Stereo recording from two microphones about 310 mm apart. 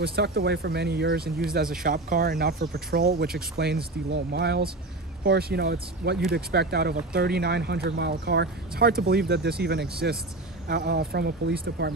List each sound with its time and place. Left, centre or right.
0.0 s speech: right